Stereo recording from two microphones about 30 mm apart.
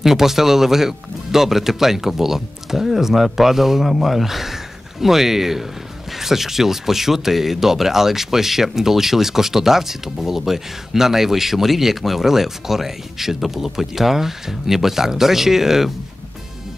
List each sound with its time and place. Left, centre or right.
0.0 s speech: centre